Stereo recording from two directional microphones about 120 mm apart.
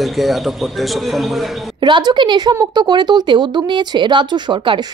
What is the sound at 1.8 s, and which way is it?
A woman's voice, 40° right (ahead or behind).